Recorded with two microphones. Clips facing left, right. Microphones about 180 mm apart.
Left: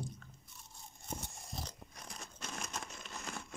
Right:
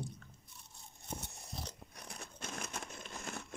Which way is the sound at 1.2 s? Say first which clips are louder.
Left 1 dB; 60° right (ahead or behind).